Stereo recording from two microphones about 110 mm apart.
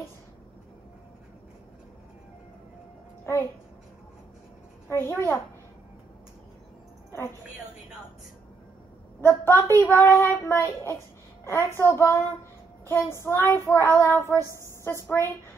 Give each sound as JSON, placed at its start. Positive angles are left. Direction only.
{"t": 4.8, "sound": "a woman's voice", "side_deg": 20}
{"t": 7.1, "sound": "music", "side_deg": 25}
{"t": 9.2, "sound": "a woman's voice", "side_deg": 20}